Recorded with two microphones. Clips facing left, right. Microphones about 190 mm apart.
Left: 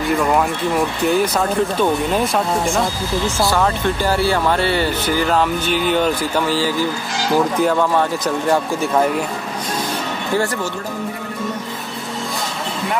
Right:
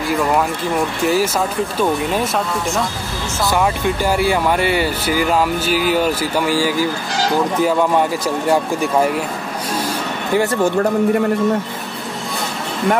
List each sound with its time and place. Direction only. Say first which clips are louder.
0.2 s speech: even; centre (ahead or behind)
3.4 s speech: right 4 dB; 10° right (ahead or behind)
8.5 s speech: right 2 dB; 10° right (ahead or behind)
10.3 s speech: right 3 dB; 20° right (ahead or behind)
10.6 s speech: right 9 dB; 60° right (ahead or behind)